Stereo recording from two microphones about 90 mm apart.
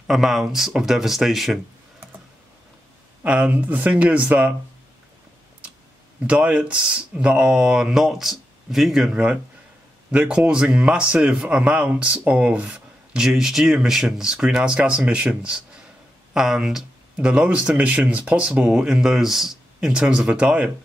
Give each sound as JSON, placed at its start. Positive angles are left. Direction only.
{"t": 0.0, "sound": "speech", "side_deg": -5}
{"t": 3.3, "sound": "a man's voice", "side_deg": -15}
{"t": 6.2, "sound": "a man's voice", "side_deg": -15}